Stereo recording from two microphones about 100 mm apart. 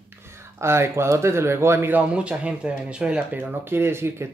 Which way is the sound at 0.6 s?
25° right (ahead or behind).